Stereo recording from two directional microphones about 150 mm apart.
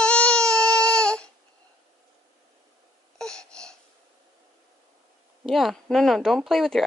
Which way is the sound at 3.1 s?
5° left (ahead or behind).